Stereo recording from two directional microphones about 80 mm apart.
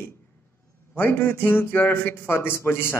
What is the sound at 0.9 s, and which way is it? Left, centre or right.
A man's voice, left.